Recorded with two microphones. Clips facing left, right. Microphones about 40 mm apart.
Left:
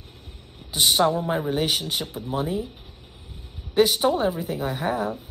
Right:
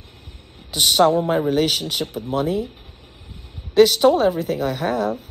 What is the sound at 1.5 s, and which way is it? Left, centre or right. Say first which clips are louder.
Speech: right 5 dB; right.